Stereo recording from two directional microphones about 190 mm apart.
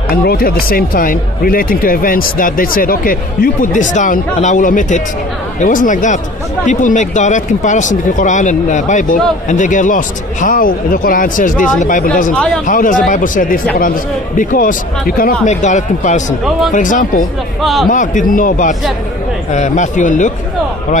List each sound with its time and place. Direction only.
0.1 s speech: 55° left (ahead or behind)
17.6 s a man's voice: centre (ahead or behind)
17.8 s speech: 45° left (ahead or behind)